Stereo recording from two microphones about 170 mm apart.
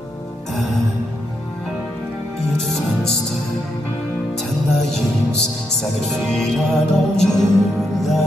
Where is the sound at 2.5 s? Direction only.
5° left (ahead or behind).